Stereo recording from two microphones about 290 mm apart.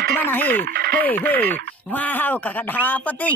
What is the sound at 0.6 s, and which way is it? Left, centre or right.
Speech, right.